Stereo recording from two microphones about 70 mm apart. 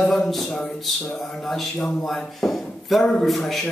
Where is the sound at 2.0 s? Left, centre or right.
Centre.